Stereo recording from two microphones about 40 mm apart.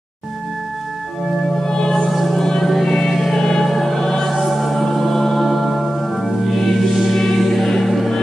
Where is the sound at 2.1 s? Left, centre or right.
Centre.